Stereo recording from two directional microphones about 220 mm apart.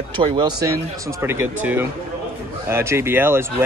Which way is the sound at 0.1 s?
20° right (ahead or behind).